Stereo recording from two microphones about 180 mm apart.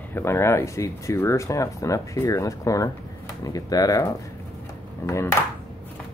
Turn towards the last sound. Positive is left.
turn(degrees=15)  # may be behind; listen again after turning